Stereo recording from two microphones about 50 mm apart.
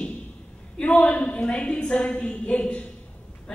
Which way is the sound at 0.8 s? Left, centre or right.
Left.